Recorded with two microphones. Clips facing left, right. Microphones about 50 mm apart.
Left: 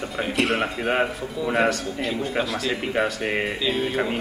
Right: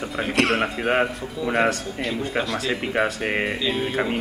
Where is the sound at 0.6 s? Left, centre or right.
Centre.